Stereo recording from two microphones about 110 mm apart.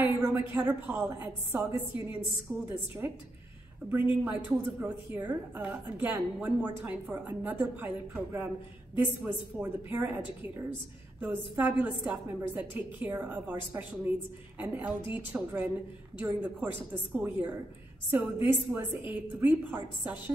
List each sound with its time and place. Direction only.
0.2 s a woman's voice: 20° right (ahead or behind)